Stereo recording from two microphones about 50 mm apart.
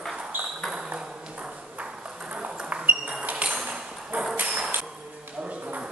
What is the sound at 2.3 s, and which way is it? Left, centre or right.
Ping, right.